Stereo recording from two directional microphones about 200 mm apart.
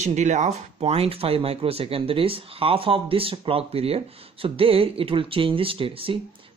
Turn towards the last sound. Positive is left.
turn(degrees=-25)  # may be behind; listen again after turning